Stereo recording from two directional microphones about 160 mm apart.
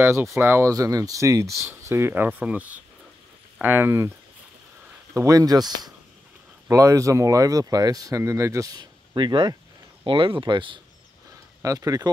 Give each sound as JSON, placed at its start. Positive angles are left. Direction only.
{"t": 0.0, "sound": "speech", "side_deg": -15}
{"t": 5.1, "sound": "speech", "side_deg": -20}
{"t": 11.6, "sound": "speech", "side_deg": -20}